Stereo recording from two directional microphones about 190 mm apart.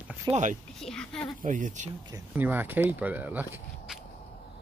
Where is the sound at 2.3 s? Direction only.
10° right (ahead or behind).